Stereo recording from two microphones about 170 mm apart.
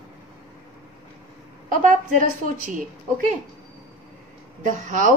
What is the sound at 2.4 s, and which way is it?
Speech, 50° right (ahead or behind).